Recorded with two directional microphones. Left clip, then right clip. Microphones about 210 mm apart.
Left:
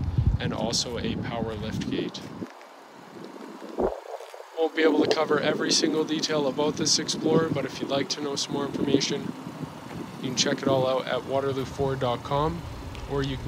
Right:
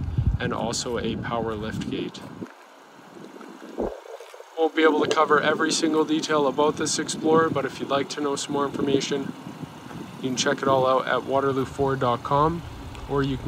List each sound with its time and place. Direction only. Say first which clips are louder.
0.4 s speech: right 1 dB; 5° left (ahead or behind)
3.8 s a sound: left 2 dB; 30° right (ahead or behind)
4.6 s speech: right 2 dB; 5° left (ahead or behind)
10.2 s speech: right 3 dB; centre (ahead or behind)